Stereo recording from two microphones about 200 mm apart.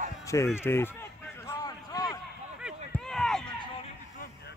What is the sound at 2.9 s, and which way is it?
Run, 5° left (ahead or behind).